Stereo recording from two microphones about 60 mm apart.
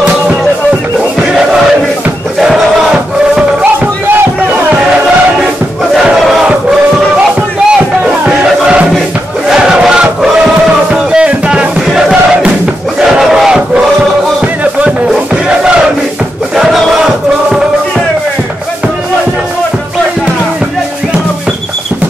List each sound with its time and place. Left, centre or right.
2.4 s crowd: centre
8.3 s music: centre
9.5 s battle cry: centre
11.1 s music: centre
13.1 s battle cry: centre
16.5 s crowd: centre